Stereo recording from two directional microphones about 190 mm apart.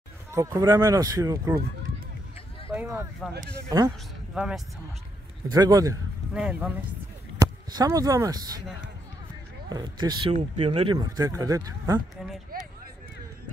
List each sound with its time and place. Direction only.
0.3 s speech: 15° right (ahead or behind)
2.7 s speech: 10° right (ahead or behind)
4.3 s speech: 5° right (ahead or behind)
5.5 s speech: 20° right (ahead or behind)
6.3 s speech: 5° right (ahead or behind)
7.3 s speech: 15° right (ahead or behind)
9.7 s speech: 20° right (ahead or behind)